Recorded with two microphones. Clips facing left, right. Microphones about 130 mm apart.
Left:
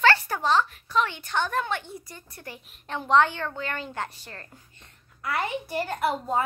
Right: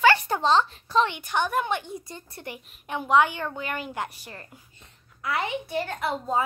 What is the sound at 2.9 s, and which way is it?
A woman's voice, 10° right (ahead or behind).